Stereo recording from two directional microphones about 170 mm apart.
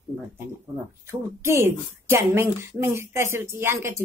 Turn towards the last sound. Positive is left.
turn(degrees=-15)  # may be behind; listen again after turning